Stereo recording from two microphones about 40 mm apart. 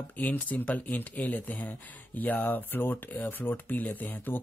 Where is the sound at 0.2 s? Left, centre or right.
Left.